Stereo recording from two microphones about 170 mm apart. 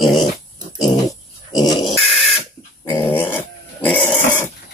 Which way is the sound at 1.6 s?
25° left (ahead or behind).